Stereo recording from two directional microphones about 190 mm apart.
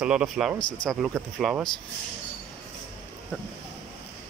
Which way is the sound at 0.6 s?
25° left (ahead or behind).